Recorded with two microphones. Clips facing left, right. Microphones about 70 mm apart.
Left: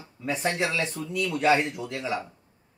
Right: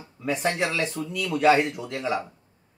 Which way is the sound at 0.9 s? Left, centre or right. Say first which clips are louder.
Right 1 dB; right.